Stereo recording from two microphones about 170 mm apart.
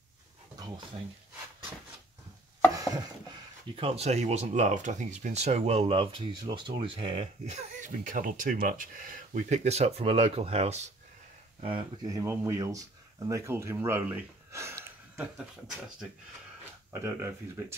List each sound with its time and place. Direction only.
3.7 s speech: 35° right (ahead or behind)
12.1 s speech: 20° right (ahead or behind)
17.0 s speech: 15° right (ahead or behind)